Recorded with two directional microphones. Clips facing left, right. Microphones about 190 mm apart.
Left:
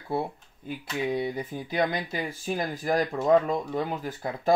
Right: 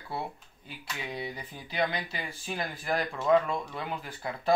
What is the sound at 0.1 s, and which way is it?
Speech, 50° left (ahead or behind).